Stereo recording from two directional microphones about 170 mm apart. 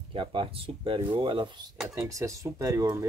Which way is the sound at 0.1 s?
30° right (ahead or behind).